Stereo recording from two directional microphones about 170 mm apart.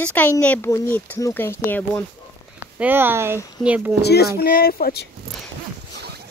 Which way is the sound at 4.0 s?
70° left (ahead or behind).